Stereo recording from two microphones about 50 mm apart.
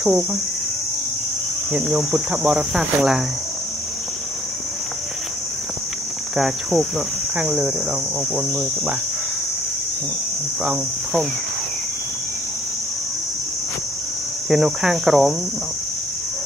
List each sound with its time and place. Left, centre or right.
0.0 s cricket: centre
2.1 s cricket: right
2.7 s speech: centre
6.3 s cricket: centre
8.4 s cricket: right
14.5 s speech: centre